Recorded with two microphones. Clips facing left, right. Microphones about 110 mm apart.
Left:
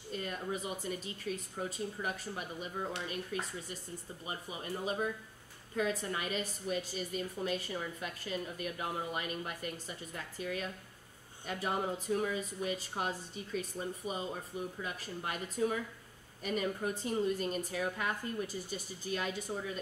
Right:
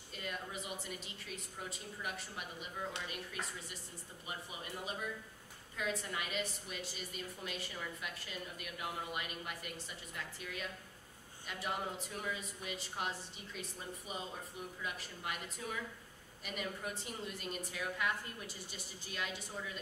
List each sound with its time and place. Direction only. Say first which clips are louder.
0.1 s a woman's voice: left 6 dB; 40° left (ahead or behind)
4.8 s a woman's voice: left 8 dB; 40° left (ahead or behind)